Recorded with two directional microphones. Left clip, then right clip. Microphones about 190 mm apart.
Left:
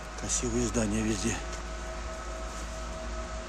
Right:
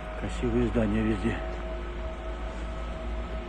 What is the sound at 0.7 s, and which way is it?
Speech, 30° left (ahead or behind).